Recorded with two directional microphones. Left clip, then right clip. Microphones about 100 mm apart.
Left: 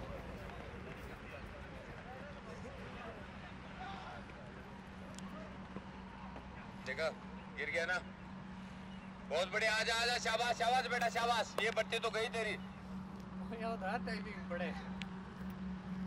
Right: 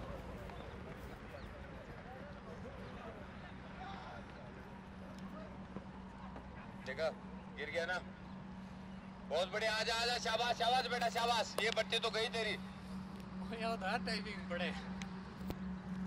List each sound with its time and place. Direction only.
6.9 s speech: 35° left (ahead or behind)
9.3 s a man's voice: 40° left (ahead or behind)
13.5 s speech: 35° right (ahead or behind)